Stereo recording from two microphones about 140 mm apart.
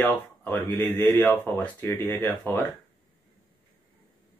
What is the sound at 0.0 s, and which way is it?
Speech, 15° left (ahead or behind).